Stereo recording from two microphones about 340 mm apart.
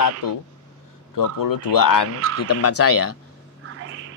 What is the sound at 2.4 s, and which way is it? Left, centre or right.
Speech, left.